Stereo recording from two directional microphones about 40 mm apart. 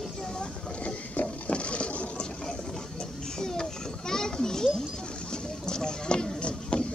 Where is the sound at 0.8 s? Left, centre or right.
Left.